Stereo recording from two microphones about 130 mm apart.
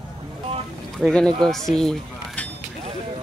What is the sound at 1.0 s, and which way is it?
Speech, 5° left (ahead or behind).